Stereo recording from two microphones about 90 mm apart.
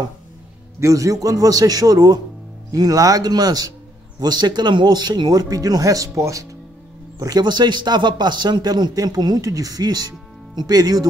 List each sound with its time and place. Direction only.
0.7 s a man's voice: 35° right (ahead or behind)